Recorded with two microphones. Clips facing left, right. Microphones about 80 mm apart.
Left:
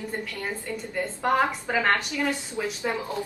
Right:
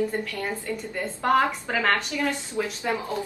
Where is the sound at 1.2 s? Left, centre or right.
Centre.